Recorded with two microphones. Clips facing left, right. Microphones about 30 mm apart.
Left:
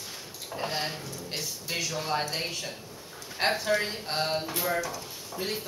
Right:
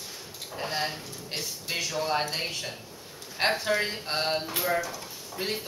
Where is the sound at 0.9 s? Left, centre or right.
Centre.